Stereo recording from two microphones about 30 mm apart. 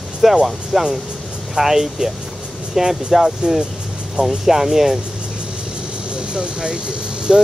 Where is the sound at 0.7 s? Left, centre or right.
Centre.